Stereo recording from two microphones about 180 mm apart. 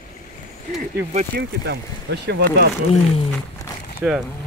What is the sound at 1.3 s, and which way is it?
Speech, 55° right (ahead or behind).